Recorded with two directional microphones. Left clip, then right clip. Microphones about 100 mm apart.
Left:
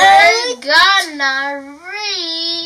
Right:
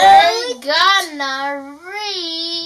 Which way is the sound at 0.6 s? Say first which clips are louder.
Left 2 dB; 10° right (ahead or behind).